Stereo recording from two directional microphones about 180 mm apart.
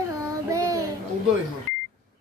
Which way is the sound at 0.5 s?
15° right (ahead or behind).